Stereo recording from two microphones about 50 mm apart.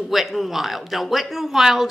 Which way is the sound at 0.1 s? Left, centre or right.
Centre.